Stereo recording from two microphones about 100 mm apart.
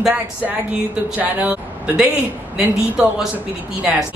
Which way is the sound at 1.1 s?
15° right (ahead or behind).